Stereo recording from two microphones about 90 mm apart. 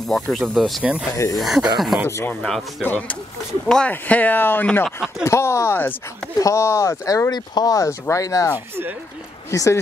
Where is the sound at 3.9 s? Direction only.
20° left (ahead or behind); by 7.3 s 35° left (ahead or behind).